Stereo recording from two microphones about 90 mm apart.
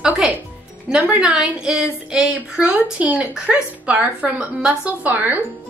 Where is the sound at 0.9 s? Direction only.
15° right (ahead or behind).